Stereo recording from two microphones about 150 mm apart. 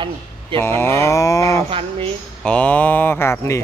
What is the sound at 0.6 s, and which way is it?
Livestock, 15° left (ahead or behind).